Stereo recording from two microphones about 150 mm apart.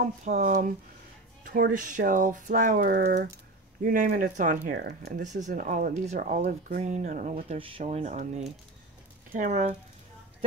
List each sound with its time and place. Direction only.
0.0 s speech: 55° right (ahead or behind); by 3.2 s 80° right
3.8 s speech: 65° right (ahead or behind); by 5.2 s 90° right
5.4 s speech: 60° right (ahead or behind)
7.3 s speech: 40° right (ahead or behind)